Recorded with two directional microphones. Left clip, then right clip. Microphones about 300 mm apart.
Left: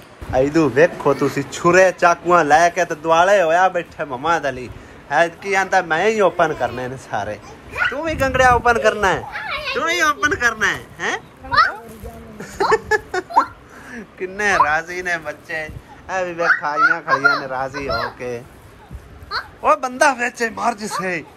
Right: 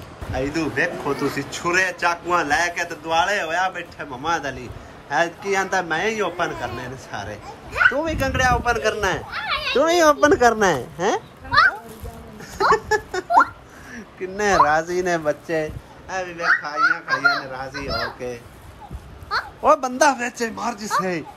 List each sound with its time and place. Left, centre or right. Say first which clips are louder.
0.3 s speech: left 8 dB; centre
9.8 s a woman's voice: right 3 dB; centre
12.4 s a sound: left 1 dB; centre
13.9 s a woman's voice: left 2 dB; centre
16.1 s speech: left 5 dB; centre
16.9 s speech: left 3 dB; right
17.5 s speech: left 6 dB; centre
19.6 s speech: left 1 dB; centre